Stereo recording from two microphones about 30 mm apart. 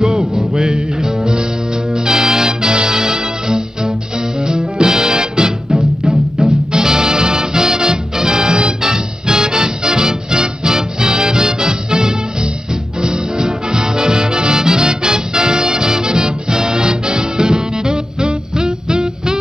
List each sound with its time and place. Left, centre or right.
0.0 s music: centre